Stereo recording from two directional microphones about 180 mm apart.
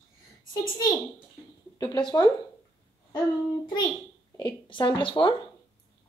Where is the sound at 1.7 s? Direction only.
25° left (ahead or behind).